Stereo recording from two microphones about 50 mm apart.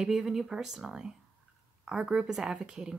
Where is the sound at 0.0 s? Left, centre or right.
Centre.